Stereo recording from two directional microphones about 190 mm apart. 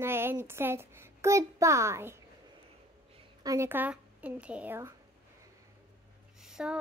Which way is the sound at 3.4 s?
15° right (ahead or behind).